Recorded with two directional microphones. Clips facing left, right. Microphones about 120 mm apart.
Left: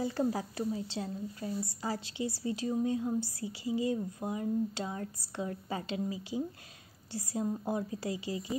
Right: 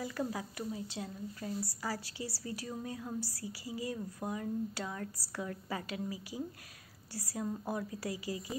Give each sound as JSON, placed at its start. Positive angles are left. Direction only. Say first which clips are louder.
{"t": 0.0, "sound": "speech", "louder": "left 6 dB", "side_deg": 30}